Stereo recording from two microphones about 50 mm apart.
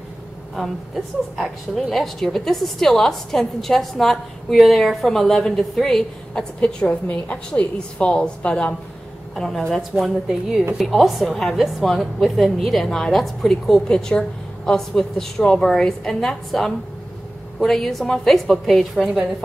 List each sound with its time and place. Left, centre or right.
1.8 s a woman's voice: centre
6.6 s a woman's voice: left
9.3 s a woman's voice: centre
13.9 s a woman's voice: centre